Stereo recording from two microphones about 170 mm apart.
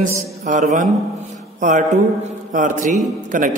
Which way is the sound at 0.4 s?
50° right (ahead or behind).